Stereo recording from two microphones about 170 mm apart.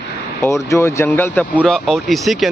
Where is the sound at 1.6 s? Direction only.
Centre (ahead or behind).